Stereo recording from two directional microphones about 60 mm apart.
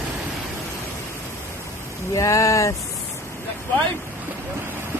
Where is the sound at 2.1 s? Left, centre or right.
Left.